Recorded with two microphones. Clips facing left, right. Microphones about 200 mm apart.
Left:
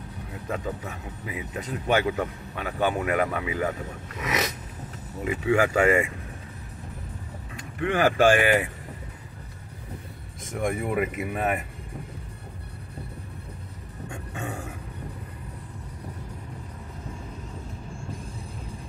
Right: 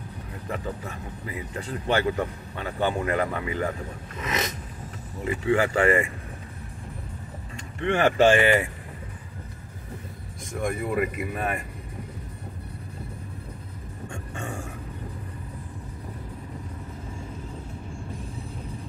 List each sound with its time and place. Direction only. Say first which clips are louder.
0.5 s speech: left 1 dB; 15° left (ahead or behind)
7.8 s speech: right 1 dB; 5° left (ahead or behind)
10.7 s speech: right 1 dB; 20° left (ahead or behind)
14.0 s a sound: left 1 dB; 5° left (ahead or behind)